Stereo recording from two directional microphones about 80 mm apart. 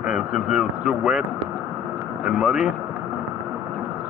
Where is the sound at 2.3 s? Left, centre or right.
Centre.